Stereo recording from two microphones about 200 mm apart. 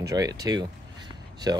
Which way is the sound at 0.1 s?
20° right (ahead or behind).